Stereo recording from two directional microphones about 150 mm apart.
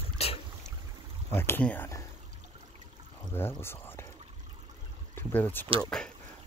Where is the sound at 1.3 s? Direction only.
15° left (ahead or behind).